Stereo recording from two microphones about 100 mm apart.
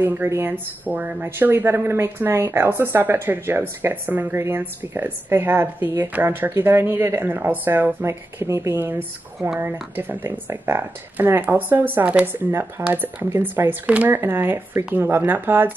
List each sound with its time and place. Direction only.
0.0 s speech: 25° right (ahead or behind)
9.9 s speech: 20° right (ahead or behind)